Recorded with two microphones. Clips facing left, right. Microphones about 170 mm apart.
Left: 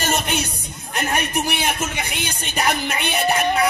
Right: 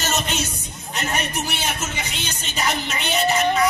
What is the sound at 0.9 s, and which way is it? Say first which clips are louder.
A man's voice: left 3 dB; 60° left (ahead or behind).